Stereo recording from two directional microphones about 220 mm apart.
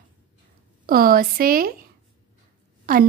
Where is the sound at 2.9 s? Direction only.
40° right (ahead or behind).